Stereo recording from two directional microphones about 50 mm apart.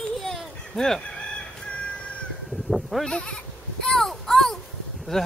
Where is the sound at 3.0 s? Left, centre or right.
Left.